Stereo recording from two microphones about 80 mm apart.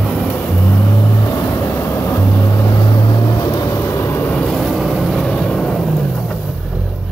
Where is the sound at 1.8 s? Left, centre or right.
Left.